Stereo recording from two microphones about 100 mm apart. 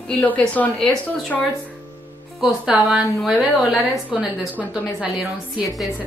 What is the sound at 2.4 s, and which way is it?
A woman's voice, 5° right (ahead or behind).